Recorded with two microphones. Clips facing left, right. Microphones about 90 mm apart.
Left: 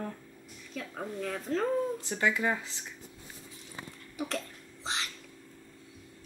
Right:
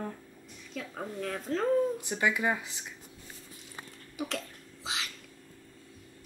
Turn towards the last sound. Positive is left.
turn(degrees=-5)  # may be behind; listen again after turning